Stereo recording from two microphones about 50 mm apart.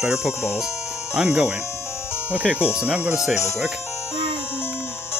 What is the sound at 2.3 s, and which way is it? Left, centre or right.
Speech, right.